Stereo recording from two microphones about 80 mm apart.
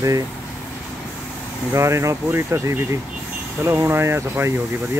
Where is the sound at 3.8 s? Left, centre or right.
Right.